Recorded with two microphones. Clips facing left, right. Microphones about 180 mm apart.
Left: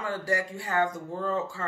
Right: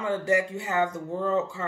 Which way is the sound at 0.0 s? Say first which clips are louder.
Right 5 dB; 20° right (ahead or behind).